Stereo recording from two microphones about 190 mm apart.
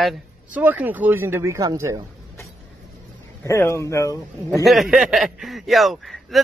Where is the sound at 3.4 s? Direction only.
15° left (ahead or behind).